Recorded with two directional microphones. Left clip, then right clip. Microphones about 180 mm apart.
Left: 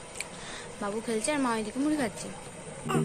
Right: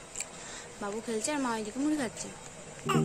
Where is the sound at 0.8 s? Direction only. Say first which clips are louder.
Left 3 dB; 10° right (ahead or behind).